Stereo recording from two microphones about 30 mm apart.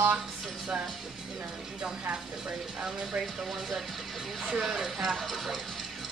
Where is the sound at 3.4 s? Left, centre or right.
Centre.